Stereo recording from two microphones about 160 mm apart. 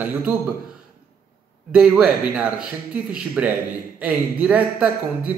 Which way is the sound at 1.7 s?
5° right (ahead or behind).